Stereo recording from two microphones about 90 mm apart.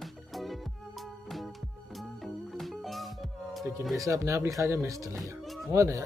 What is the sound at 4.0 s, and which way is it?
Speech, 35° right (ahead or behind).